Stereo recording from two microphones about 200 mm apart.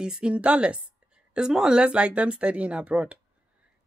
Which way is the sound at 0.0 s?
5° right (ahead or behind).